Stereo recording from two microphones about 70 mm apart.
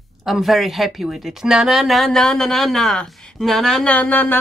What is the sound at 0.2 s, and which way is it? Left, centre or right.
A woman's voice, centre.